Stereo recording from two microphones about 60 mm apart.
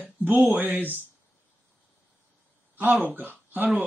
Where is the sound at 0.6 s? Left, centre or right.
Right.